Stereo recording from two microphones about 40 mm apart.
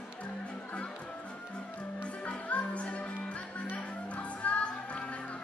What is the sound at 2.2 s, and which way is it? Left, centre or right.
Music, left.